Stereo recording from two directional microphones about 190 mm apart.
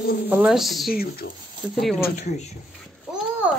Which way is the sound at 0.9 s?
50° left (ahead or behind).